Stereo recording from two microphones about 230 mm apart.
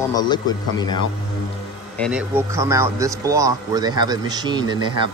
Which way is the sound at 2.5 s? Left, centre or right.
Centre.